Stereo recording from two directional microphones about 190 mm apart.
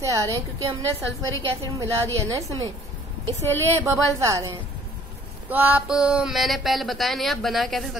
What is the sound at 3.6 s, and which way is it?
A woman's voice, 15° right (ahead or behind).